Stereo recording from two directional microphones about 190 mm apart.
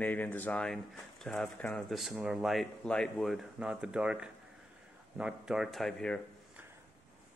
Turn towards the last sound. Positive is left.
turn(degrees=5)  # may be behind; listen again after turning